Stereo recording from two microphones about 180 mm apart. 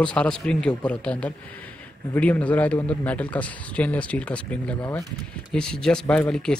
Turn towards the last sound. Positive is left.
turn(degrees=5)  # may be behind; listen again after turning